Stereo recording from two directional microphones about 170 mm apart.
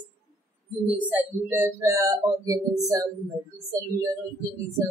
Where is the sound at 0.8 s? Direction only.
10° right (ahead or behind).